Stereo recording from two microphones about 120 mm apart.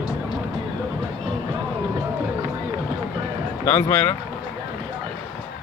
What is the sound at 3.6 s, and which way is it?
Speech, 20° left (ahead or behind).